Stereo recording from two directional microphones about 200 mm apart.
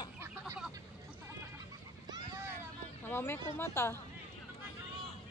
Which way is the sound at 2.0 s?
20° right (ahead or behind).